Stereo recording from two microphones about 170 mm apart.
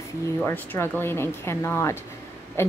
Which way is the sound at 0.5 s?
15° left (ahead or behind).